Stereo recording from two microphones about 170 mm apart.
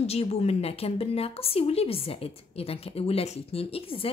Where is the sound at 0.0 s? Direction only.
35° left (ahead or behind).